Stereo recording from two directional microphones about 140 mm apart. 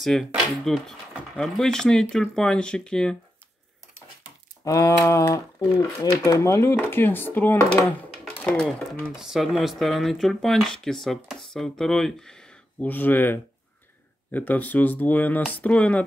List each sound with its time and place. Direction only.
0.0 s speech: centre (ahead or behind)
4.6 s speech: 20° left (ahead or behind)